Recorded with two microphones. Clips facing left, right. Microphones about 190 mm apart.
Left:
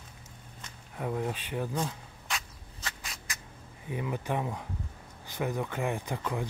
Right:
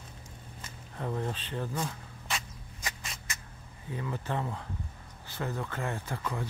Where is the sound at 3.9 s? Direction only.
15° left (ahead or behind).